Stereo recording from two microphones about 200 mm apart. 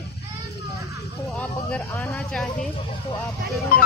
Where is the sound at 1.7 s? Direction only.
10° left (ahead or behind).